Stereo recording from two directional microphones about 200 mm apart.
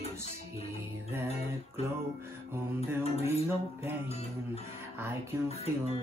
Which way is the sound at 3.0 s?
30° left (ahead or behind).